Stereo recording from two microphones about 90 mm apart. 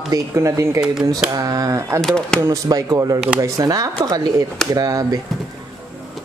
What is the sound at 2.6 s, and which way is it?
Speech, 40° right (ahead or behind).